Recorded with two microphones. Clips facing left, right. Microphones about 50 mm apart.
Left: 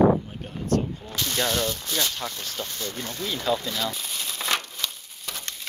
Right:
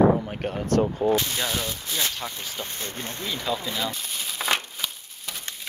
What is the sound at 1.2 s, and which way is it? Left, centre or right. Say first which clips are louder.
Speech: left 3 dB; centre.